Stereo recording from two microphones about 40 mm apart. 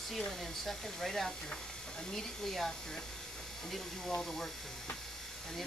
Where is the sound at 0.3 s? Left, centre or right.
Centre.